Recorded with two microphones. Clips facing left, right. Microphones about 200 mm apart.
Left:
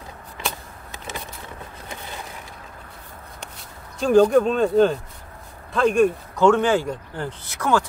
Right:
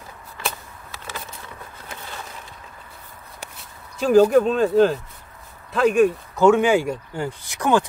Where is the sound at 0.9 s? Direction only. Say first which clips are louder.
Left 2 dB; 20° left (ahead or behind).